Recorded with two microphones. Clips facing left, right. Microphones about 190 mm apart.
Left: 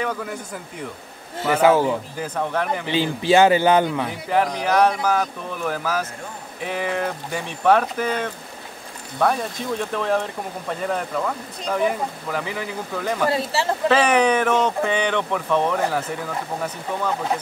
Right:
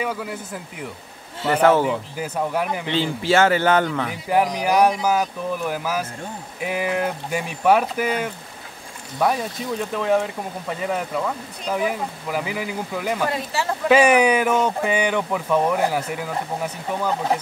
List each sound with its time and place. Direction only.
0.0 s speech: 5° right (ahead or behind)
1.4 s a man's voice: 10° left (ahead or behind)
1.9 s speech: 10° right (ahead or behind)
2.9 s a man's voice: 15° left (ahead or behind)
4.3 s speech: 10° right (ahead or behind)
13.3 s speech: 30° left (ahead or behind)
13.8 s speech: 10° right (ahead or behind)